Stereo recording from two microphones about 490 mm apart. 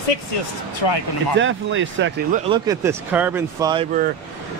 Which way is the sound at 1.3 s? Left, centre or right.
Right.